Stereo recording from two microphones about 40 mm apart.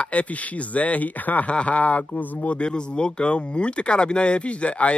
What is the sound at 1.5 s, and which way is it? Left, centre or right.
Speech, left.